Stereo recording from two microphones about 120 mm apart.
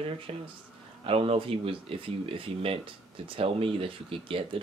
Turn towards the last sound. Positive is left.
turn(degrees=-50)  # may be behind; listen again after turning